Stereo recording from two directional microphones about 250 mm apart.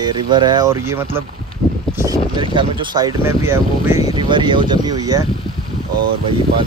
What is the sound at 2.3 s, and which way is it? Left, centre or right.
Speech, centre.